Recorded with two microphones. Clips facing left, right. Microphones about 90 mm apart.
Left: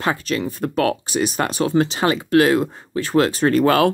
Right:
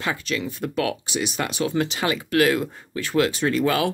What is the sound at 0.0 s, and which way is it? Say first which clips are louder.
Speech: left 5 dB; 40° left (ahead or behind).